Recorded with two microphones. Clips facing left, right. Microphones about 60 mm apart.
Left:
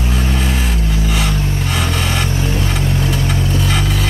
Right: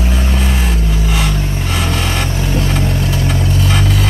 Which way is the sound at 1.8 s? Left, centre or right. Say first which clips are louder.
Right 1 dB; centre.